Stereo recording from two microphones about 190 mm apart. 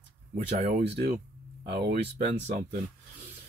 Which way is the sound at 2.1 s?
40° right (ahead or behind).